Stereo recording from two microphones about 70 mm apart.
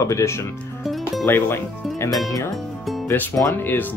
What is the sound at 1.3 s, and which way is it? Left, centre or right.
Speech, left.